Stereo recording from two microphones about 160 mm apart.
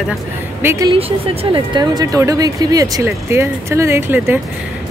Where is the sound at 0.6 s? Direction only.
20° right (ahead or behind).